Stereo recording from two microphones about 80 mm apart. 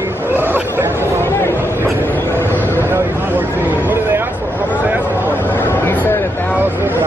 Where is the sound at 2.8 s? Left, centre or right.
Right.